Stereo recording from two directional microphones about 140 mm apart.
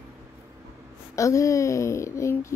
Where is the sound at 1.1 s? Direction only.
20° left (ahead or behind).